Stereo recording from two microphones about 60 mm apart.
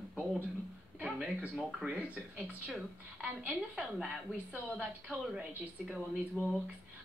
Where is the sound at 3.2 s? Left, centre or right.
Right.